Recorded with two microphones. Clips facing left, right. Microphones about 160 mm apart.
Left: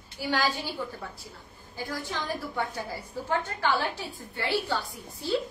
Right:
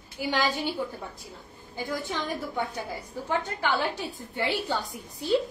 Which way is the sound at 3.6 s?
20° right (ahead or behind).